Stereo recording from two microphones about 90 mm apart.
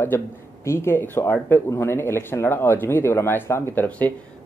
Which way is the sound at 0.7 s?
30° left (ahead or behind).